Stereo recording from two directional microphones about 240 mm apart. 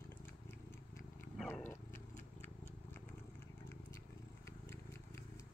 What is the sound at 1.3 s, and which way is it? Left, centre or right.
Roaring cats, centre.